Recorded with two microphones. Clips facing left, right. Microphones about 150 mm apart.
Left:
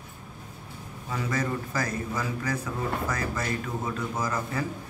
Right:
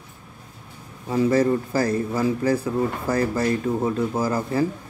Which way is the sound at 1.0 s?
30° right (ahead or behind).